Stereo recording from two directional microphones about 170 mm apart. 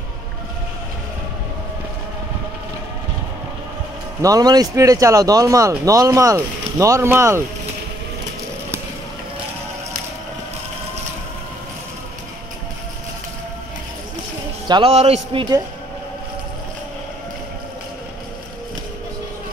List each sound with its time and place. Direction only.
4.2 s speech: 20° right (ahead or behind)
14.7 s a man's voice: 35° right (ahead or behind)